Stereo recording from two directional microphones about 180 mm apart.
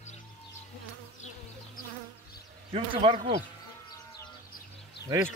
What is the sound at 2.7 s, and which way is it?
Speech, 30° right (ahead or behind).